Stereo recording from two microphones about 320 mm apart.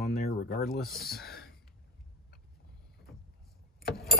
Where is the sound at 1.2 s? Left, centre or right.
Left.